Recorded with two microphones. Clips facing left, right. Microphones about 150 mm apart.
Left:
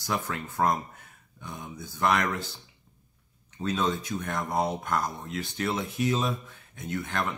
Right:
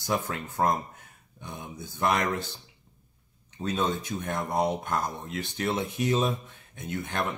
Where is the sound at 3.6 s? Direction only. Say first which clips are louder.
Even; 25° right (ahead or behind).